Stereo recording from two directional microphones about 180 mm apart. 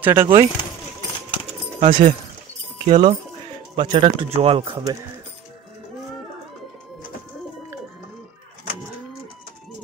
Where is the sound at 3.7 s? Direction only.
30° right (ahead or behind).